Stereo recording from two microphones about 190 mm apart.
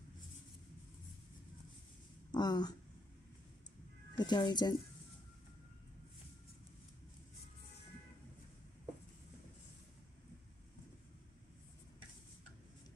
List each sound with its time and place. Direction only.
2.3 s speech: 20° left (ahead or behind)
4.2 s speech: 20° left (ahead or behind)